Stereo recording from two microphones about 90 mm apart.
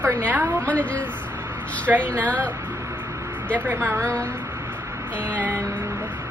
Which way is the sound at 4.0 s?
15° left (ahead or behind).